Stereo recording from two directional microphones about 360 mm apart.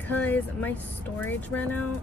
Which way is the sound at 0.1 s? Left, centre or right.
Centre.